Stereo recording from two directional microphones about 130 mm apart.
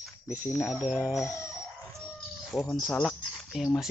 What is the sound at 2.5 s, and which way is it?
Speech, 20° left (ahead or behind).